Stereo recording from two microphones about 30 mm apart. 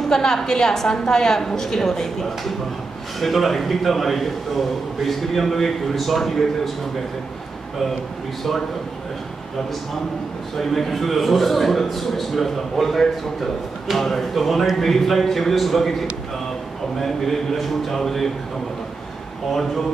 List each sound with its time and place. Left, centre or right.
0.1 s a woman's voice: centre
10.6 s a man's voice: centre